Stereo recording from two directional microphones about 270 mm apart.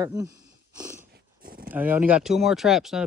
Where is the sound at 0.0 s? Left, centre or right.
Centre.